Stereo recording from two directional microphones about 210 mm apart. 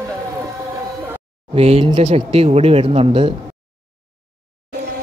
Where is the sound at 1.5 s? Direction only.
25° right (ahead or behind).